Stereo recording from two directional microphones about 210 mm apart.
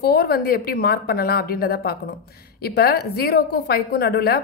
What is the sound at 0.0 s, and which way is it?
A woman's voice, 50° left (ahead or behind).